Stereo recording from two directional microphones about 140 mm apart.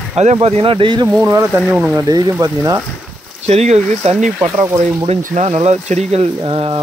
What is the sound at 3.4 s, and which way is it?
Speech, 50° right (ahead or behind).